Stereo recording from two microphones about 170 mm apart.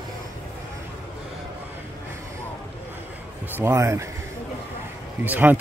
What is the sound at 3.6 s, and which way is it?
Speech, 15° right (ahead or behind).